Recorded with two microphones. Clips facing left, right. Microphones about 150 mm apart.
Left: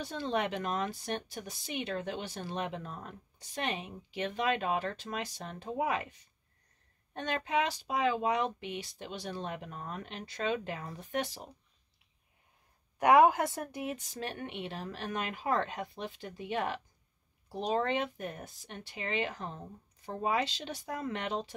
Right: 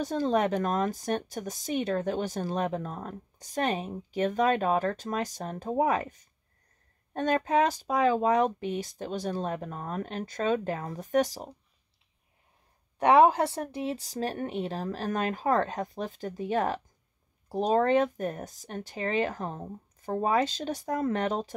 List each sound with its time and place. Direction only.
0.0 s speech: 45° right (ahead or behind)
13.0 s speech: 30° right (ahead or behind)